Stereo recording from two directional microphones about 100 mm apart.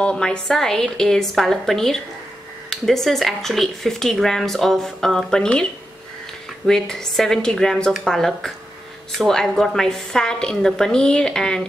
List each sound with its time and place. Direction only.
0.0 s speech: 10° left (ahead or behind)